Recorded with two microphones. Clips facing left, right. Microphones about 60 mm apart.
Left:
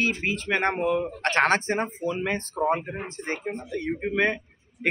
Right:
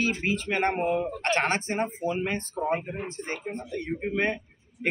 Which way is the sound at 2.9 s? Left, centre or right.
Left.